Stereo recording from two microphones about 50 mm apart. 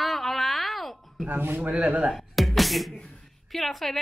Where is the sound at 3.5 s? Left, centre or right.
Centre.